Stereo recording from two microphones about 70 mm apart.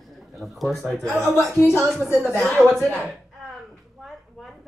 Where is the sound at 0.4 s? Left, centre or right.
Centre.